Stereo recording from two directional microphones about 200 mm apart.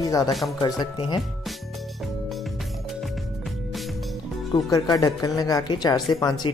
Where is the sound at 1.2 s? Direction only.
Centre (ahead or behind).